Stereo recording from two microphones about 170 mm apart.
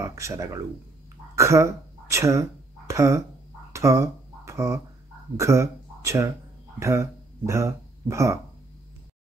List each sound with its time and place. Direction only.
0.0 s speech: 20° right (ahead or behind)
3.7 s a sound: 15° right (ahead or behind)
5.4 s speech: 15° right (ahead or behind)